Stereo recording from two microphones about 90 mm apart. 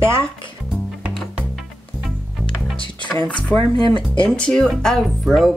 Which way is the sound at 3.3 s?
15° left (ahead or behind).